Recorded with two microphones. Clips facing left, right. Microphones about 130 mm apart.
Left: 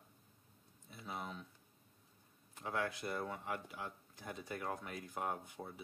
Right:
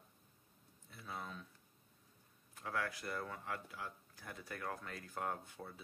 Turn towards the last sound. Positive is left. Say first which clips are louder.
# left 1 dB
turn(degrees=15)  # may be behind; listen again after turning